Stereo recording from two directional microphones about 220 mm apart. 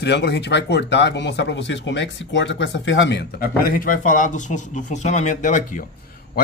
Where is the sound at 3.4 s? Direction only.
40° left (ahead or behind).